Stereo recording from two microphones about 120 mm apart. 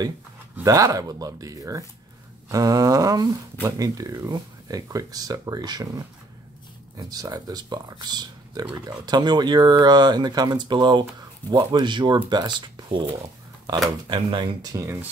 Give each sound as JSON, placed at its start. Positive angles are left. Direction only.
{"t": 0.7, "sound": "speech", "side_deg": -30}
{"t": 14.0, "sound": "speech", "side_deg": -40}